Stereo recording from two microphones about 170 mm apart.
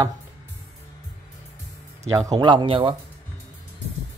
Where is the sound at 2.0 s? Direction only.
20° right (ahead or behind).